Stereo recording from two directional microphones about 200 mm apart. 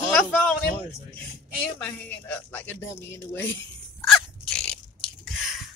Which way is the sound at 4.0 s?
Centre (ahead or behind).